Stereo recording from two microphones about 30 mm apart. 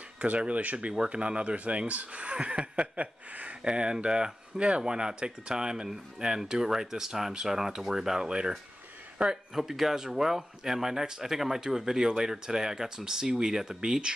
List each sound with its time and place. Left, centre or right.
0.5 s speech: right
0.9 s speech: right
3.6 s speech: right
4.8 s speech: right; by 8.2 s centre
8.2 s speech: right
9.6 s speech: centre
11.6 s speech: centre
14.1 s speech: right